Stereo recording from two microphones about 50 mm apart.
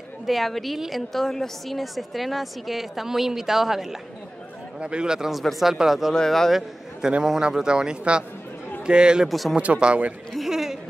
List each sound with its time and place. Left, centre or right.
0.3 s a woman's voice: centre
4.7 s speech: centre
5.4 s a woman's voice: centre
6.1 s speech: centre
7.2 s speech: centre
9.3 s a woman's voice: centre
9.6 s speech: right
10.3 s a sound: centre